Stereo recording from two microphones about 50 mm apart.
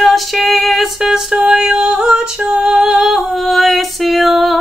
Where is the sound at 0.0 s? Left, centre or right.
Centre.